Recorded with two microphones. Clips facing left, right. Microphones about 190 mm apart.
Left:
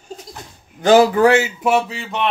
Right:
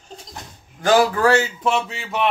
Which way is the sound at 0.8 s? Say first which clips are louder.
Left 5 dB; 20° left (ahead or behind).